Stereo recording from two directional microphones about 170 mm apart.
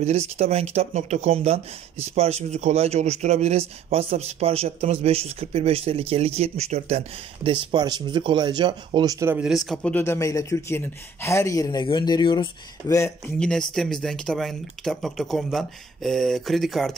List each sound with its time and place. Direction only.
0.4 s speech: 40° right (ahead or behind)
7.7 s speech: 25° right (ahead or behind)
9.4 s speech: centre (ahead or behind); by 12.9 s 30° left (ahead or behind)
13.4 s speech: 5° left (ahead or behind)